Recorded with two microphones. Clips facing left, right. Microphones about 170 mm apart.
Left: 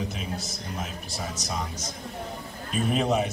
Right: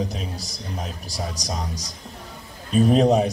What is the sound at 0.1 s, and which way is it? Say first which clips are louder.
A man's voice: right 1 dB; 35° right (ahead or behind).